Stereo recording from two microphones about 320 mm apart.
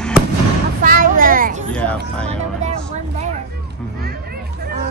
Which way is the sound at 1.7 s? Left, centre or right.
Centre.